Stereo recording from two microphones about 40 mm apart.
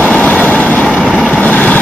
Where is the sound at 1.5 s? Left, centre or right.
Left.